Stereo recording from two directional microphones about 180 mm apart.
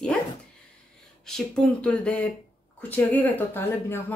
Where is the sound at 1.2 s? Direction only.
5° left (ahead or behind).